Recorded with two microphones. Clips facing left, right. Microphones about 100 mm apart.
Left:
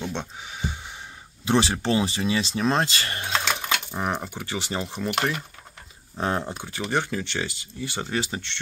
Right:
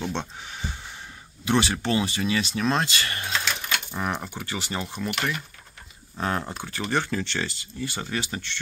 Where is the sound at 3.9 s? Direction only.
20° left (ahead or behind).